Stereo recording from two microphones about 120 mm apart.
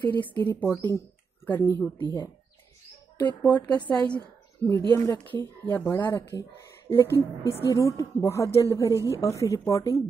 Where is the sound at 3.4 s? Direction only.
35° left (ahead or behind).